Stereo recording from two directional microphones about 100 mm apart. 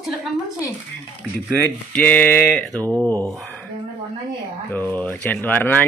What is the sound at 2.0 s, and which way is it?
Speech, 15° left (ahead or behind).